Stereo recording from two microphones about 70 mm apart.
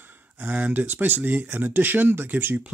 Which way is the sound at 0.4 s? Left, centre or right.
Centre.